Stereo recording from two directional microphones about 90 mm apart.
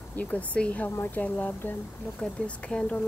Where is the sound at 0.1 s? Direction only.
20° left (ahead or behind).